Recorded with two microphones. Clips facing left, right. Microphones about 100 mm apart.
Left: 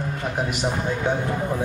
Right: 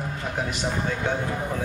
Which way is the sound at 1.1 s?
15° left (ahead or behind).